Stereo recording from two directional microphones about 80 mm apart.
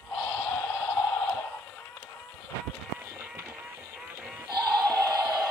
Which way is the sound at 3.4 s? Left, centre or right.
Right.